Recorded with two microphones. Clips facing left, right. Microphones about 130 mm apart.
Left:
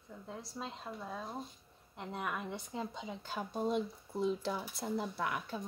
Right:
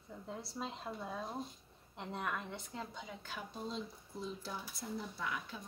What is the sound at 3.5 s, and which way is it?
Speech, 55° left (ahead or behind).